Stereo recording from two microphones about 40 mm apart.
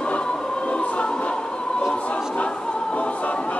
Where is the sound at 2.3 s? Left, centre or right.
Left.